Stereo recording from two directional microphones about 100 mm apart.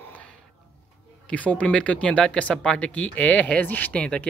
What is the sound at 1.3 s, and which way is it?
Speech, 15° left (ahead or behind).